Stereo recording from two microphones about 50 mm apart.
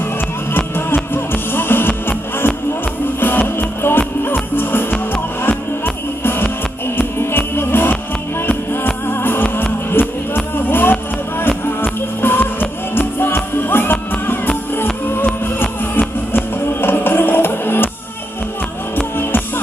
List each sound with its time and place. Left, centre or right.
0.5 s music: left
6.2 s music: left
9.0 s music: left
15.6 s music: left
19.1 s music: left